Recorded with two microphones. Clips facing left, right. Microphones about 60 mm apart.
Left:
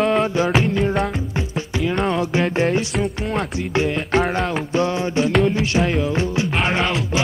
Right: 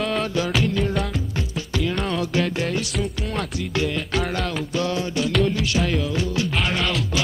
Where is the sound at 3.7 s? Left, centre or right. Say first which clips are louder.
Left 6 dB; left.